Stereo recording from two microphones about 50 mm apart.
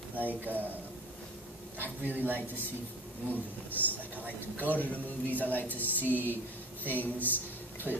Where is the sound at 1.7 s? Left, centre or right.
Right.